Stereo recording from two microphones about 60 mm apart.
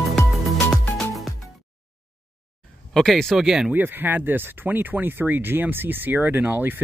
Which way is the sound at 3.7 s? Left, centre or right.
Right.